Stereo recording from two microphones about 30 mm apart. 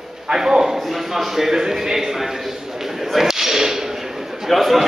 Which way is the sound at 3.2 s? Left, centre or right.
Centre.